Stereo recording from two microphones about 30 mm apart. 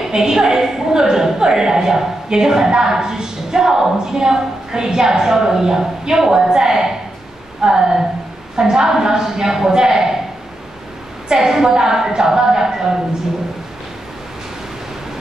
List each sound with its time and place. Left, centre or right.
0.1 s a woman's voice: centre
11.3 s a woman's voice: centre